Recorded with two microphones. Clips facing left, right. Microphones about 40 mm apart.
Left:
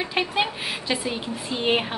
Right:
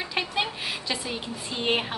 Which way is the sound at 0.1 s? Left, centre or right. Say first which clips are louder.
Left 2 dB; centre.